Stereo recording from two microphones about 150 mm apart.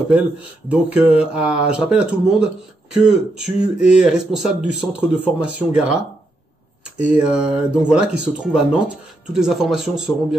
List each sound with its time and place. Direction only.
0.7 s speech: 10° right (ahead or behind)
7.0 s speech: 5° right (ahead or behind)